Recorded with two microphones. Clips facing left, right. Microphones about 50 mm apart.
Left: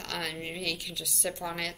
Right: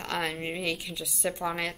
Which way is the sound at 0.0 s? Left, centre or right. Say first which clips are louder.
Right 4 dB; right.